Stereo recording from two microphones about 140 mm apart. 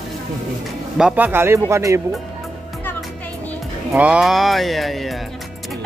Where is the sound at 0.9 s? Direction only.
10° right (ahead or behind).